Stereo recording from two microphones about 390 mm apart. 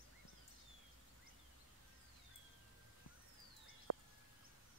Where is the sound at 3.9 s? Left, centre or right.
Right.